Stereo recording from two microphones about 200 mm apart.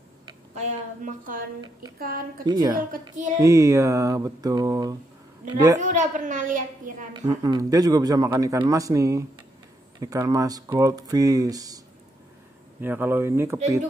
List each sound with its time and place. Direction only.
0.6 s a woman's voice: 40° right (ahead or behind)
2.4 s a woman's voice: 20° right (ahead or behind)
5.8 s a woman's voice: 40° right (ahead or behind)
7.2 s speech: 20° right (ahead or behind)
12.8 s speech: 10° right (ahead or behind)